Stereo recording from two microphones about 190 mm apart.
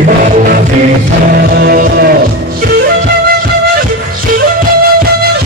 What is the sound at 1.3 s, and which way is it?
Music, 55° right (ahead or behind).